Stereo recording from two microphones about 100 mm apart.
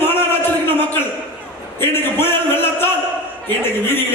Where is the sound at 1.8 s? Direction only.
20° left (ahead or behind).